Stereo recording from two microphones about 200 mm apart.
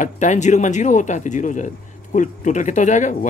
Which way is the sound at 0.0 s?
35° left (ahead or behind).